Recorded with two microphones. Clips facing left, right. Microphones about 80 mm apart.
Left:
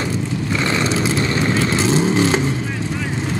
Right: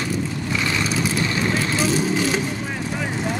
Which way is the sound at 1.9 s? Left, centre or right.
Left.